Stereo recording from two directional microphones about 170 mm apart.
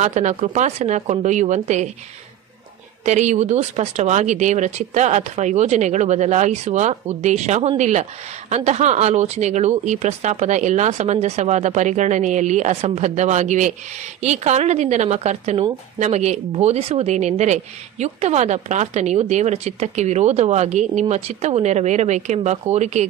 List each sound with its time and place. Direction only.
0.0 s speech: 45° right (ahead or behind)
3.1 s speech: 45° right (ahead or behind)